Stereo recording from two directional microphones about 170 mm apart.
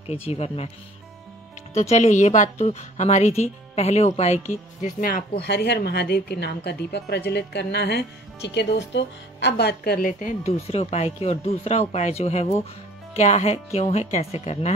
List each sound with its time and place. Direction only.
0.0 s speech: 35° left (ahead or behind)
1.8 s speech: 45° left (ahead or behind)
5.4 s speech: 80° left; by 10.5 s 50° left (ahead or behind)
10.7 s speech: 40° left (ahead or behind)